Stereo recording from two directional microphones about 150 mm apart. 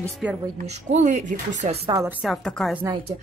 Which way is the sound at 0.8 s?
50° right (ahead or behind).